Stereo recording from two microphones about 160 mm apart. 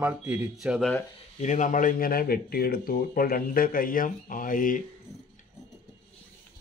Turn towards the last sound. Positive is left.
turn(degrees=60)  # may be behind; listen again after turning